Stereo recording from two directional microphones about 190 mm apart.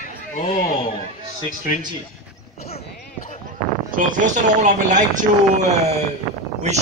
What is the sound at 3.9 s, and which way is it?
Speech, 45° right (ahead or behind).